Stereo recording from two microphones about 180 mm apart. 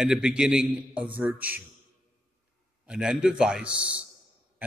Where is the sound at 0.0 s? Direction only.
5° right (ahead or behind).